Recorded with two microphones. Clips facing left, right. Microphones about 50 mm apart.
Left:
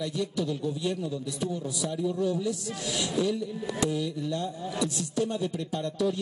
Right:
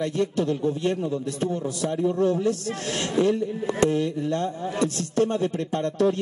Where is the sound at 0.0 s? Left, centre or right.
Right.